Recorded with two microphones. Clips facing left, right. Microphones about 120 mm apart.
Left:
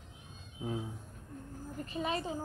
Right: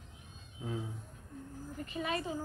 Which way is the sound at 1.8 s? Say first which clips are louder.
Left 1 dB; 30° left (ahead or behind).